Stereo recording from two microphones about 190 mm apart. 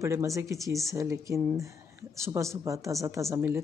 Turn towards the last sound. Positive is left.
turn(degrees=-10)  # may be behind; listen again after turning